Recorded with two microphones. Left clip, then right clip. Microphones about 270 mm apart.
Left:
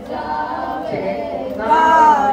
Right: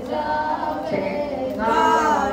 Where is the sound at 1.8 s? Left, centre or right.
Left.